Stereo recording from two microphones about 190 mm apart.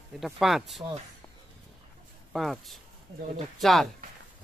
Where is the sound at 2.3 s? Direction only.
Centre (ahead or behind).